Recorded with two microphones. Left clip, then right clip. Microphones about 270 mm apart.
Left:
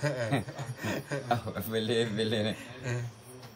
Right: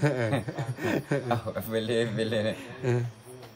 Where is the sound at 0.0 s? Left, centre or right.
Right.